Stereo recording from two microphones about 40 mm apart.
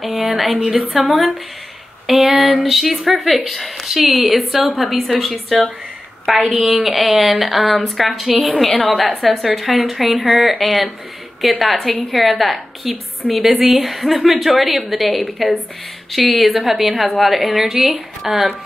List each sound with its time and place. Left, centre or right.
0.2 s a woman's voice: centre
2.1 s a sound: right
2.5 s a woman's voice: centre
3.8 s a woman's voice: centre
8.3 s a sound: right
8.5 s a woman's voice: centre